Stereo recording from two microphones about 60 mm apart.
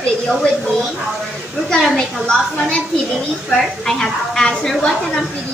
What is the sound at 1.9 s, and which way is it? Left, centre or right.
Speech, centre.